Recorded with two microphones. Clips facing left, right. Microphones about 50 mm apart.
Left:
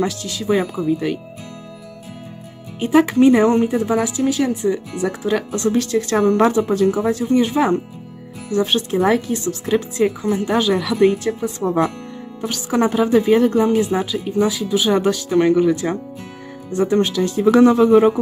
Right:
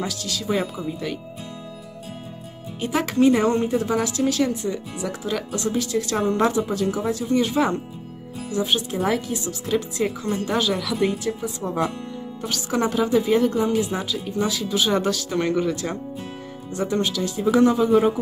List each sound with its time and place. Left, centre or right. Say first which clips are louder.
0.0 s speech: left 6 dB; left
2.8 s speech: left 6 dB; left
4.6 s speech: left 7 dB; left
8.5 s speech: left 5 dB; left
12.4 s speech: left 5 dB; left
13.9 s speech: left 6 dB; left
14.5 s speech: left 4 dB; centre; by 17.5 s left
17.5 s speech: left 5 dB; left